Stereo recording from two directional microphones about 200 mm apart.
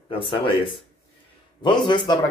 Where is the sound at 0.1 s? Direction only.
25° left (ahead or behind).